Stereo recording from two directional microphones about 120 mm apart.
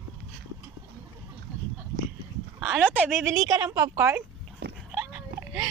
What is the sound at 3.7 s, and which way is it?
Speech, 30° right (ahead or behind).